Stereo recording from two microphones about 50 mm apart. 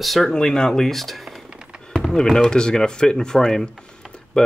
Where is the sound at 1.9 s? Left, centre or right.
Centre.